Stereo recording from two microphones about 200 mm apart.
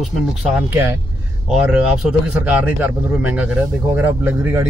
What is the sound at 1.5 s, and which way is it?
Speech, 5° right (ahead or behind).